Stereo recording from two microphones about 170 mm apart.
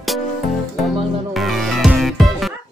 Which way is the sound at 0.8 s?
Centre (ahead or behind).